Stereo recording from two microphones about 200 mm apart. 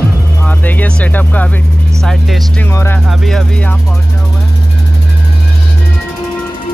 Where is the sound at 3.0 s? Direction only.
Centre (ahead or behind).